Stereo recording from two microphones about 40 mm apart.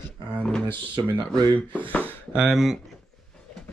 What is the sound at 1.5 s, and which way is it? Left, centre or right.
Speech, left.